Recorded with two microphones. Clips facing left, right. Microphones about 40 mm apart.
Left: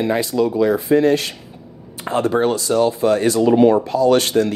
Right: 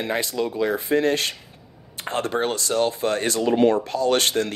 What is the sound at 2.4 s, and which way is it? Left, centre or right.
Speech, right.